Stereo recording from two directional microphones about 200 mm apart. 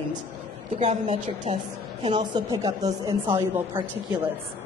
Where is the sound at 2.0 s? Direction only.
25° right (ahead or behind).